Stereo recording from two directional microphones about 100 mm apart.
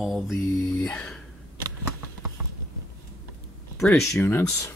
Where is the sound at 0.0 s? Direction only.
Centre (ahead or behind).